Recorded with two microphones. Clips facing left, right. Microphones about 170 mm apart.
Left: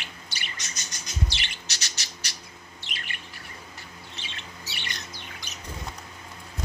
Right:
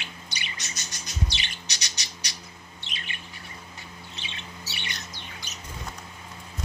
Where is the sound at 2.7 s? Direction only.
20° right (ahead or behind).